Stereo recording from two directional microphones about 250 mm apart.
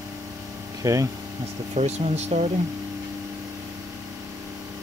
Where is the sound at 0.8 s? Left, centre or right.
Centre.